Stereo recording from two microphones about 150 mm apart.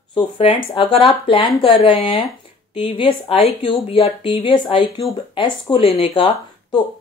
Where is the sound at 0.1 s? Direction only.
35° left (ahead or behind).